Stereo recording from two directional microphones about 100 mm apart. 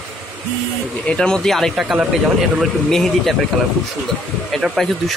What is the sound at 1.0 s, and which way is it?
Speech, 10° left (ahead or behind).